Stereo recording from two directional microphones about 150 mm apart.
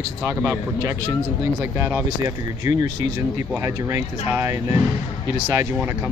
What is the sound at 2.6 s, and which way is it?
Speech, 20° right (ahead or behind).